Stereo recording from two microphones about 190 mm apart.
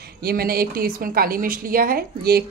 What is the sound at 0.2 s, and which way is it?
A woman's voice, 55° right (ahead or behind).